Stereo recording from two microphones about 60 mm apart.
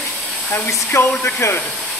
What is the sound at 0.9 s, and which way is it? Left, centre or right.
Speech, left.